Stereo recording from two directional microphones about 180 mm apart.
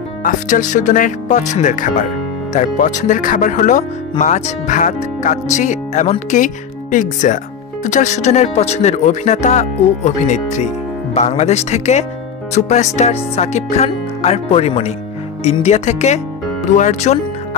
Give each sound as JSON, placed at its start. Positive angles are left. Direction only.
{"t": 0.2, "sound": "speech", "side_deg": 45}